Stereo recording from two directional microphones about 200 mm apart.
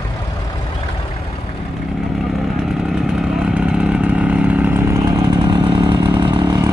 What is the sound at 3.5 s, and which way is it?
Chainsaw, 5° right (ahead or behind).